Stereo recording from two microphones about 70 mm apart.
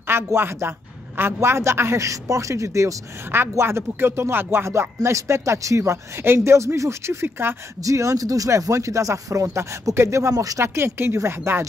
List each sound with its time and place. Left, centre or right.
0.1 s a woman's voice: right
7.8 s speech: right
10.3 s speech: right
10.6 s a woman's voice: right